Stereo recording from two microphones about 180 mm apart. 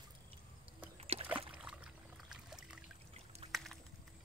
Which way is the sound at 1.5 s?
5° right (ahead or behind).